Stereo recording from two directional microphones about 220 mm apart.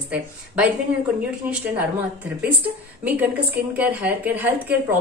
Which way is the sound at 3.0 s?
5° right (ahead or behind).